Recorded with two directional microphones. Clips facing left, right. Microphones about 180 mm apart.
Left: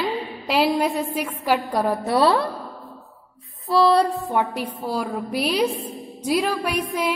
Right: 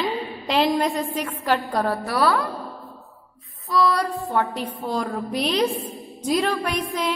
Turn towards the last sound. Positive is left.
turn(degrees=10)  # may be behind; listen again after turning